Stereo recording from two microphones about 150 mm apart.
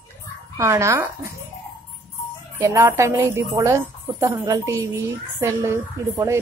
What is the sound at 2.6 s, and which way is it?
A woman's voice, 20° right (ahead or behind).